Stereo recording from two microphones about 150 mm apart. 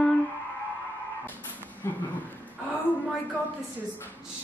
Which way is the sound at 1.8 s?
15° left (ahead or behind).